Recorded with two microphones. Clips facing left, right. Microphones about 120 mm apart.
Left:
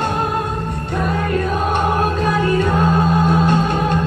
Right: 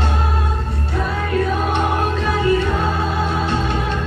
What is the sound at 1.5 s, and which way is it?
Music, 45° left (ahead or behind).